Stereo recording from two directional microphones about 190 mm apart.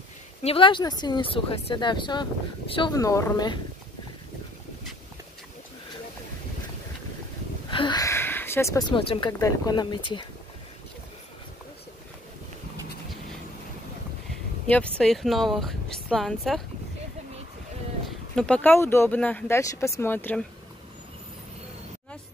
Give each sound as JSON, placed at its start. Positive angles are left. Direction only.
{"t": 0.4, "sound": "speech", "side_deg": 30}
{"t": 7.7, "sound": "speech", "side_deg": 25}
{"t": 14.7, "sound": "speech", "side_deg": 5}
{"t": 18.0, "sound": "speech", "side_deg": 5}